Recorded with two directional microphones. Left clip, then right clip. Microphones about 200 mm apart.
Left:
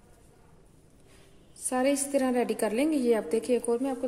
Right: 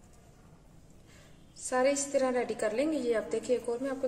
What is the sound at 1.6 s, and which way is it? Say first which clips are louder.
A woman's voice: left 1 dB; 40° left (ahead or behind).